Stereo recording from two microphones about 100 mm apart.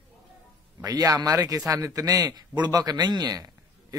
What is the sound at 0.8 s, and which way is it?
A man's voice, 35° right (ahead or behind).